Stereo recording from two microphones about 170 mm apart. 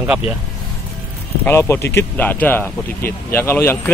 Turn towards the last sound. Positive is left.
turn(degrees=15)  # may be behind; listen again after turning